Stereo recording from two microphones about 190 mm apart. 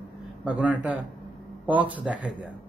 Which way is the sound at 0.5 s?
5° right (ahead or behind).